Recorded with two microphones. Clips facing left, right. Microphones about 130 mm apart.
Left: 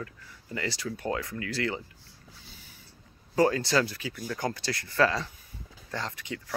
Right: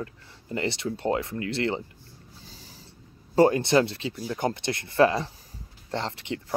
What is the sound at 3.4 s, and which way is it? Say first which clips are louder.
Speech: right 5 dB; 25° right (ahead or behind).